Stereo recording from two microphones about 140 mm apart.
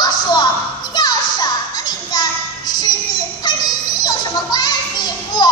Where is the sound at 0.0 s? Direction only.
30° left (ahead or behind).